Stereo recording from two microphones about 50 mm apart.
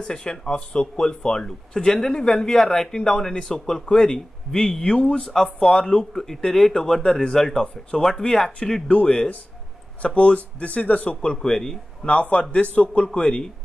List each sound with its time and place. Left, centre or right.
0.0 s a man's voice: centre
5.3 s a man's voice: centre; by 11.1 s left
11.4 s a man's voice: centre